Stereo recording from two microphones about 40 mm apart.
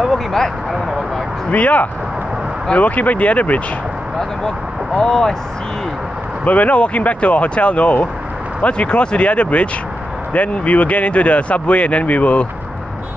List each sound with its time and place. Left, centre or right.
0.1 s speech: centre
1.5 s speech: left
5.0 s speech: centre
6.4 s speech: left